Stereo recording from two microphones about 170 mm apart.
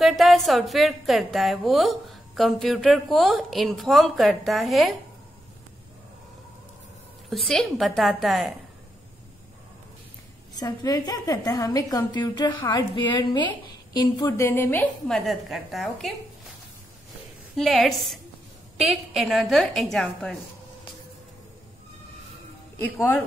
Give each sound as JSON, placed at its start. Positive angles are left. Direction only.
{"t": 0.0, "sound": "a woman's voice", "side_deg": 0}
{"t": 7.2, "sound": "a woman's voice", "side_deg": 0}
{"t": 10.6, "sound": "a woman's voice", "side_deg": 20}
{"t": 17.6, "sound": "a woman's voice", "side_deg": 0}
{"t": 22.8, "sound": "a woman's voice", "side_deg": 10}